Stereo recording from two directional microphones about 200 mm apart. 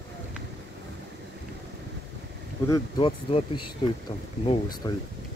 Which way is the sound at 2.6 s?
20° left (ahead or behind).